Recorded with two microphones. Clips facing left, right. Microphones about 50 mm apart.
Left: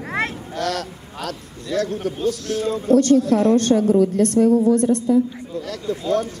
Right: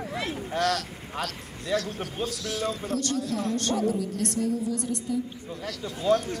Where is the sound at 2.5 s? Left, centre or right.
Left.